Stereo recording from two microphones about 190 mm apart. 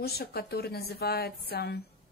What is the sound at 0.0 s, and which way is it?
Speech, 55° left (ahead or behind).